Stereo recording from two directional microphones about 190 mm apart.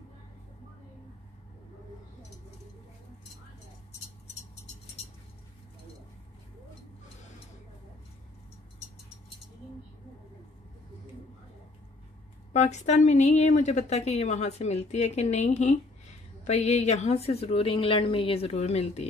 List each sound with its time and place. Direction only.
12.5 s a woman's voice: 35° left (ahead or behind)